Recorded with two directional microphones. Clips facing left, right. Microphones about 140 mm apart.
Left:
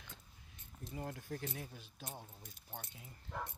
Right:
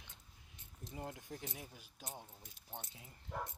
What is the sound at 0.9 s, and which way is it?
Speech, 20° right (ahead or behind).